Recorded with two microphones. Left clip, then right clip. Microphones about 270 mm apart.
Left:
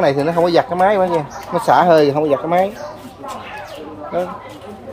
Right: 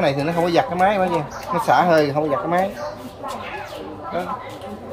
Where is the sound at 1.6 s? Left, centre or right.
Left.